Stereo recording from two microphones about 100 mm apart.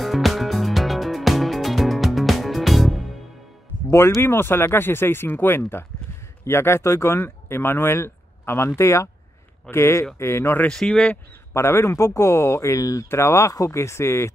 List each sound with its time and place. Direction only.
0.0 s music: centre (ahead or behind)
4.2 s speech: 25° left (ahead or behind)
10.7 s speech: 5° left (ahead or behind)
11.5 s speech: 25° left (ahead or behind)